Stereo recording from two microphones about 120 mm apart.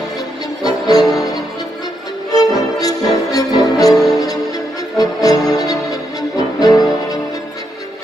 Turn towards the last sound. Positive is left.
turn(degrees=30)  # may be behind; listen again after turning